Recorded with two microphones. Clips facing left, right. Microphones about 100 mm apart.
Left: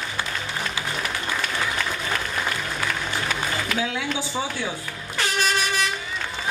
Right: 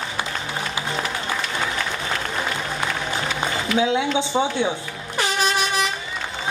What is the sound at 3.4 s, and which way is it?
Speech, 20° right (ahead or behind).